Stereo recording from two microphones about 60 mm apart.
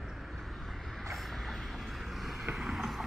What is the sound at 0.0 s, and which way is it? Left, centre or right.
Vehicle, centre.